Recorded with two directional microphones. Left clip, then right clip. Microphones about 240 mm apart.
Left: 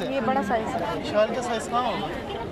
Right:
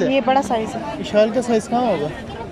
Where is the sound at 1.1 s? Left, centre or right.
Right.